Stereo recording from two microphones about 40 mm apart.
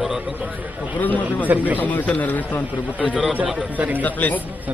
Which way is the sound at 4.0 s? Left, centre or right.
Left.